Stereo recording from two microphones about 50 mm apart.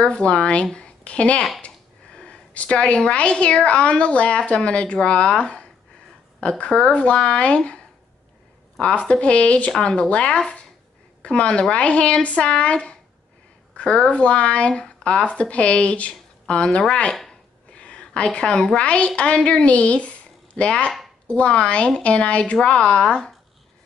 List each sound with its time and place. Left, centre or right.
0.0 s a woman's voice: left
8.9 s a woman's voice: left
17.7 s a sound: left
18.8 s a woman's voice: left